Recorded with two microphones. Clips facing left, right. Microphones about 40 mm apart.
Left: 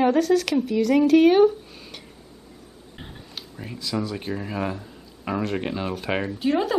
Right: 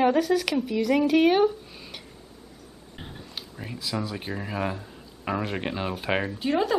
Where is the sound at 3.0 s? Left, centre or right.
Centre.